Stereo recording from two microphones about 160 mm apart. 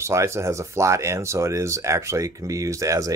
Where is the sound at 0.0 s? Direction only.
20° right (ahead or behind).